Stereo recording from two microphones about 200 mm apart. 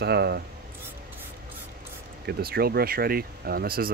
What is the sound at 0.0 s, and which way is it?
Speech, 55° right (ahead or behind).